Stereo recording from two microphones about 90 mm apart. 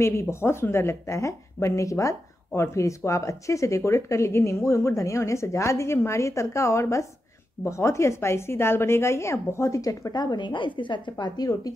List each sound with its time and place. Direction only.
0.0 s a woman's voice: 30° left (ahead or behind); by 11.7 s 45° left (ahead or behind)